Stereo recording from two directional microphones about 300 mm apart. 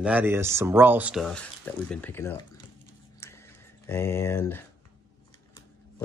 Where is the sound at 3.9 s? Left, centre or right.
Centre.